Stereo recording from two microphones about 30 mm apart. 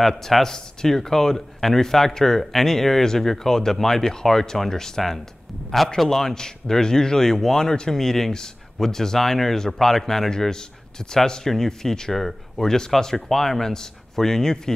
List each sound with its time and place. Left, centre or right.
0.0 s a man's voice: centre
0.5 s a man's voice: centre